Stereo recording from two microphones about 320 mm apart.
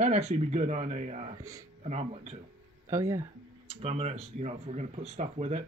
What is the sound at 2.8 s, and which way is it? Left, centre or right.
Speech, centre.